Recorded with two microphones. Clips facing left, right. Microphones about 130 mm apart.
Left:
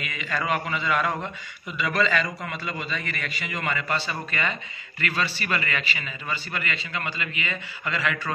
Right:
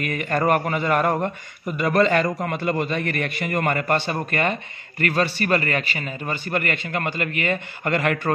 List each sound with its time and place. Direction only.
0.0 s a man's voice: 55° right (ahead or behind)